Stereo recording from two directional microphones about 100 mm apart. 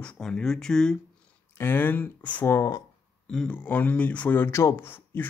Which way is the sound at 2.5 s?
35° left (ahead or behind).